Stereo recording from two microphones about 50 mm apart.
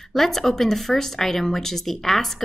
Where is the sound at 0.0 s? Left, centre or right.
Centre.